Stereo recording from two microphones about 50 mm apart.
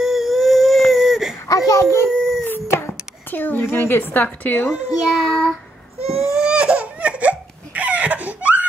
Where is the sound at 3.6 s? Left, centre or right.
Left.